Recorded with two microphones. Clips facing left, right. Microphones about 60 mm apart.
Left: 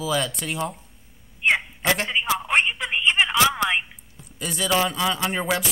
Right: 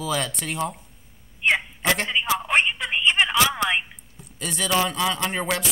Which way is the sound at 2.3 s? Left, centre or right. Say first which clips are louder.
Right 1 dB; centre.